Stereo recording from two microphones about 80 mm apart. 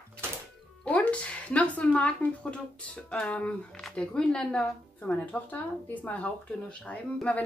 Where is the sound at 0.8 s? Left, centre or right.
Centre.